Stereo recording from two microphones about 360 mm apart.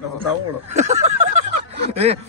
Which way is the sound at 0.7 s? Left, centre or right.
Centre.